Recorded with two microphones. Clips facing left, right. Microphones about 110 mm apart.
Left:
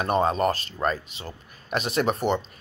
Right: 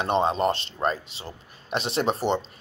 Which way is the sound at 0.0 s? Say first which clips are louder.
Even; 25° right (ahead or behind).